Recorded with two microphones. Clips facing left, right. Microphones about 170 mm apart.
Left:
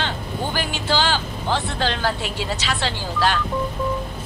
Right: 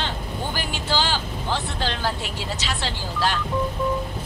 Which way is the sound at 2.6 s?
75° left (ahead or behind).